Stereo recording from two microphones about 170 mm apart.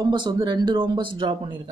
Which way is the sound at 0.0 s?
25° right (ahead or behind).